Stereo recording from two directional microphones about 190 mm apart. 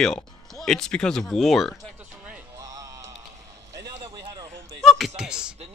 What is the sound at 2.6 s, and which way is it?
Music, 15° right (ahead or behind).